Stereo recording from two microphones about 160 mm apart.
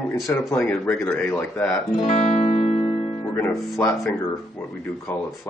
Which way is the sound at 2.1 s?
40° left (ahead or behind).